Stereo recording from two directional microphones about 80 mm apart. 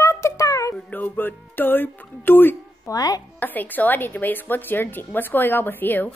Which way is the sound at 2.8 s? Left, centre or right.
Left.